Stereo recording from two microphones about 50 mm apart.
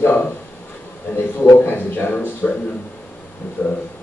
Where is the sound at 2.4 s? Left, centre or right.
Centre.